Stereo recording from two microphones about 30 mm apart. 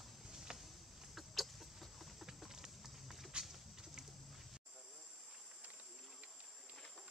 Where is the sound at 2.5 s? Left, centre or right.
Centre.